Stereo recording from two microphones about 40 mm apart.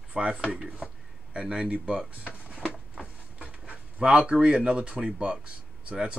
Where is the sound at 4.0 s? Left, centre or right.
Right.